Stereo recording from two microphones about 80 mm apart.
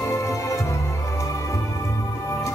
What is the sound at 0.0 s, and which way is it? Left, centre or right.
Music, left.